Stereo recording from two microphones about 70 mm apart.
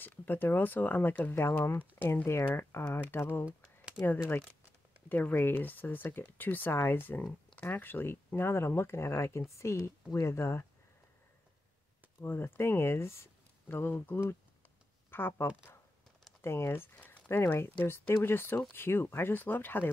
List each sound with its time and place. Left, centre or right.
0.0 s speech: left
3.4 s a sound: centre
5.1 s speech: left
12.2 s speech: left
16.9 s crumpling: left
17.8 s speech: left